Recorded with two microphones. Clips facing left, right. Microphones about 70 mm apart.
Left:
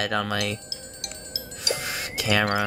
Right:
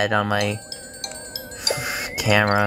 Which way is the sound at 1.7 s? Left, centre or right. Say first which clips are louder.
Right 4 dB; centre.